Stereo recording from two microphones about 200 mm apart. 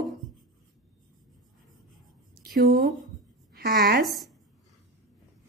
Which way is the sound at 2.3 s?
50° right (ahead or behind).